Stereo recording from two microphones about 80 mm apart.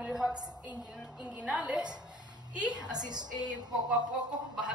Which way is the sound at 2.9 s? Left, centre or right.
Right.